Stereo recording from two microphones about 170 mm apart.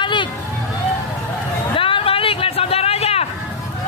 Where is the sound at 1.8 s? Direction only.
30° left (ahead or behind).